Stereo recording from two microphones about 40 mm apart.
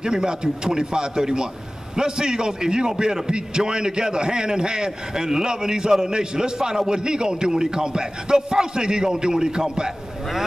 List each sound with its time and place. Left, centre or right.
0.0 s a man's voice: centre